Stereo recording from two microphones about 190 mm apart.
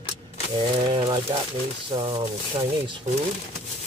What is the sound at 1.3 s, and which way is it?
Speech, 25° right (ahead or behind).